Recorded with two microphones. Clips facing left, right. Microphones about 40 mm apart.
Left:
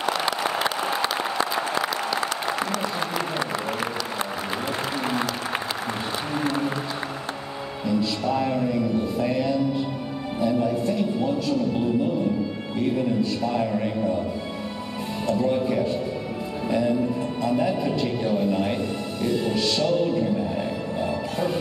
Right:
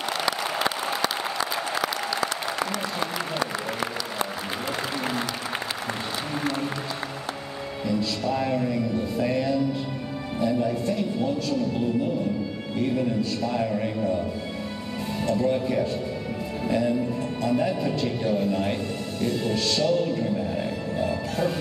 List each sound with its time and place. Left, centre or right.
0.2 s applause: left
7.8 s music: centre
8.4 s a man's voice: centre
8.9 s music: centre
10.4 s speech: centre
15.2 s speech: centre
16.6 s music: centre
18.2 s speech: centre
19.2 s music: centre